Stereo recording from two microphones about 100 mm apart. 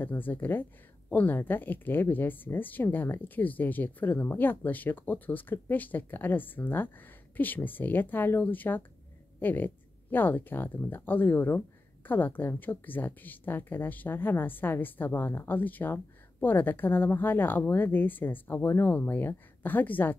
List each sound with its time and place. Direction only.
0.0 s a woman's voice: 20° left (ahead or behind)